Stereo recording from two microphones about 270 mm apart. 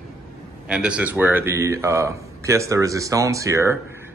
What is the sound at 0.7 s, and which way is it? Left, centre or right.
Speech, centre.